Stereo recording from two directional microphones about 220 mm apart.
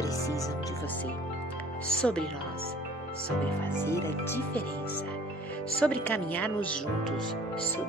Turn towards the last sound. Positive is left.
turn(degrees=5)  # may be behind; listen again after turning